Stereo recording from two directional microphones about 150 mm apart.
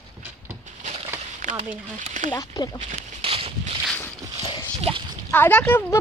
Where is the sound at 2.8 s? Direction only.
45° right (ahead or behind).